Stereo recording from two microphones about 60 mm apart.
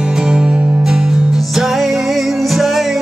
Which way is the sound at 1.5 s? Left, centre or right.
Centre.